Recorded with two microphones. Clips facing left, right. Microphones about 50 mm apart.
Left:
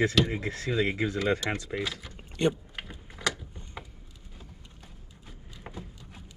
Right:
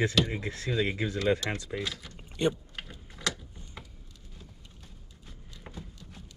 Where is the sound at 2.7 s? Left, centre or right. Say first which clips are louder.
Left 2 dB; centre.